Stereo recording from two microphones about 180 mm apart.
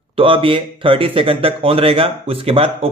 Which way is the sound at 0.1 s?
30° right (ahead or behind).